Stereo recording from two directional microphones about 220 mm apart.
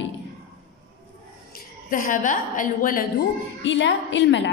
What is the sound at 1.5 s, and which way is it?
A woman's voice, 40° left (ahead or behind).